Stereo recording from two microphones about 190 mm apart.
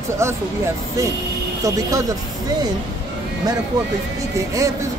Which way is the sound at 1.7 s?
20° right (ahead or behind).